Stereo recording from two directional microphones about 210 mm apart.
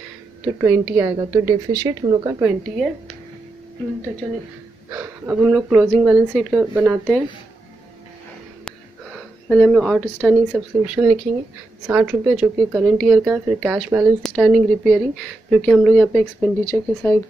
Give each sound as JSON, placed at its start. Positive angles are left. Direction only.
{"t": 0.6, "sound": "a woman's voice", "side_deg": -10}
{"t": 4.8, "sound": "speech", "side_deg": -10}
{"t": 8.6, "sound": "speech", "side_deg": 5}